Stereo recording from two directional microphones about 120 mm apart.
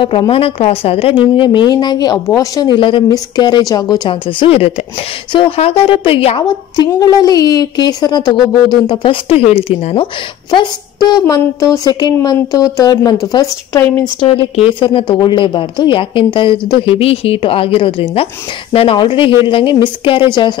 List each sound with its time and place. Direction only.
0.3 s a woman's voice: 50° left (ahead or behind); by 4.1 s 35° left (ahead or behind)
4.1 s a woman's voice: 50° left (ahead or behind)
6.9 s speech: 30° left (ahead or behind); by 10.0 s 50° left (ahead or behind)
10.5 s speech: 35° left (ahead or behind)
14.2 s speech: 55° left (ahead or behind)
14.7 s a woman's voice: 45° left (ahead or behind)